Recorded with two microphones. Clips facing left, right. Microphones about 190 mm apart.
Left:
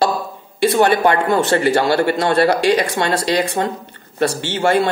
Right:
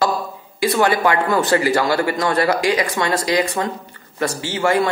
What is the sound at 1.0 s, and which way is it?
Speech, 25° left (ahead or behind).